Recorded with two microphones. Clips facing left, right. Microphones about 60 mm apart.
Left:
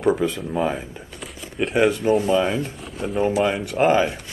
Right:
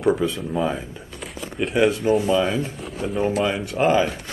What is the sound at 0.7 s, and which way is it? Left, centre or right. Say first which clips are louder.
Speech: left 1 dB; left.